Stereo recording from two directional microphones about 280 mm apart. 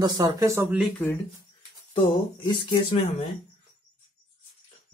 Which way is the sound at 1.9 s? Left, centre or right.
Centre.